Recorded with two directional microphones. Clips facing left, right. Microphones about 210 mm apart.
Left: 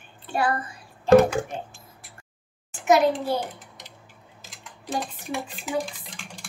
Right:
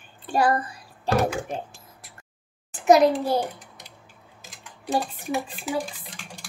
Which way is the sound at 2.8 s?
35° right (ahead or behind).